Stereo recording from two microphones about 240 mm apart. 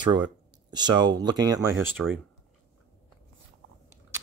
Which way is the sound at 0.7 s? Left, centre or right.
Centre.